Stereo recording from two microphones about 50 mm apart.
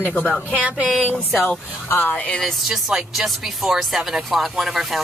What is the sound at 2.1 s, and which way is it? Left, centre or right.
Speech, left.